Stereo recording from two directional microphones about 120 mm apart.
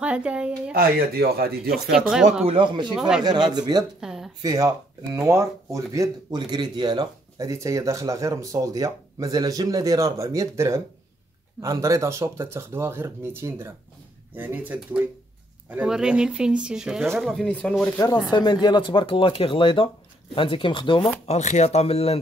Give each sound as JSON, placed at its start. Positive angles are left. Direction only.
{"t": 0.0, "sound": "speech", "side_deg": -10}
{"t": 2.4, "sound": "speech", "side_deg": -45}
{"t": 2.9, "sound": "speech", "side_deg": -5}
{"t": 3.5, "sound": "speech", "side_deg": -35}
{"t": 4.0, "sound": "a sound", "side_deg": -5}
{"t": 4.4, "sound": "speech", "side_deg": -30}
{"t": 17.9, "sound": "speech", "side_deg": 30}
{"t": 21.3, "sound": "speech", "side_deg": 70}